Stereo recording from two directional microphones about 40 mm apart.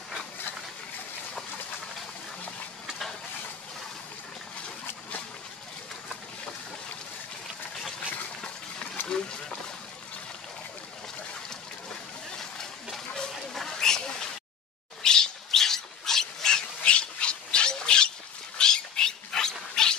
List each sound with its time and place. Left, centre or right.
9.0 s wild animals: centre
12.4 s a sound: centre
18.6 s cat: centre